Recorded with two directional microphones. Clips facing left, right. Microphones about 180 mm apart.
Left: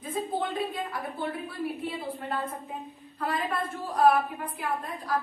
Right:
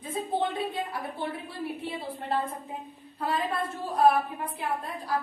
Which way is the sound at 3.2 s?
25° right (ahead or behind).